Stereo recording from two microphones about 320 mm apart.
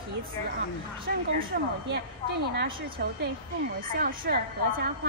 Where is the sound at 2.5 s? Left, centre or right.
Right.